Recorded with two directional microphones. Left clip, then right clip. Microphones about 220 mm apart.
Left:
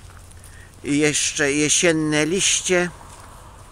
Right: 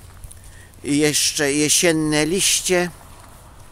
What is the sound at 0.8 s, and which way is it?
Speech, 15° right (ahead or behind).